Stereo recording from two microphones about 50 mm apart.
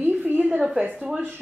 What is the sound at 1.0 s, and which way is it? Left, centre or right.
Speech, centre.